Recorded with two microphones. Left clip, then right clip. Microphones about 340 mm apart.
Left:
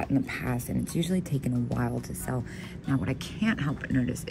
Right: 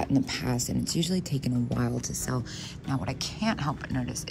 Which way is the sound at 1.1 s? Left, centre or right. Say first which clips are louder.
Even; centre.